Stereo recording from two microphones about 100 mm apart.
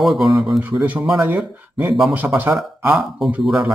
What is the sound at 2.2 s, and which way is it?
Speech, 15° right (ahead or behind).